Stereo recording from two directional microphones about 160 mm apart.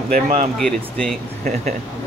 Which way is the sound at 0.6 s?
5° left (ahead or behind).